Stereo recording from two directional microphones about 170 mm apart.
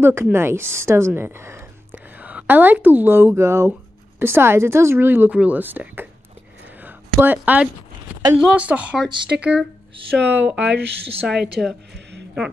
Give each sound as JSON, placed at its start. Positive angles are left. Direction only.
{"t": 0.0, "sound": "a woman's voice", "side_deg": -15}
{"t": 6.8, "sound": "a sound", "side_deg": -10}
{"t": 8.4, "sound": "speech", "side_deg": -5}
{"t": 10.7, "sound": "speech", "side_deg": -85}
{"t": 11.6, "sound": "a woman's voice", "side_deg": 0}
{"t": 11.9, "sound": "a sound", "side_deg": -85}